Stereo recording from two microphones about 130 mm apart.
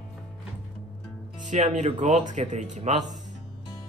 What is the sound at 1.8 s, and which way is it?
Speech, 60° right (ahead or behind).